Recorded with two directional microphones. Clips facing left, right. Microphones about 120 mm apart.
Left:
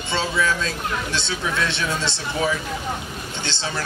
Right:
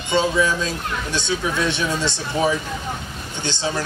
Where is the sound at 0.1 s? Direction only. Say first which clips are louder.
Right 4 dB; 15° right (ahead or behind).